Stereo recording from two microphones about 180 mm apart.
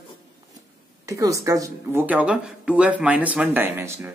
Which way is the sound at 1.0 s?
20° right (ahead or behind).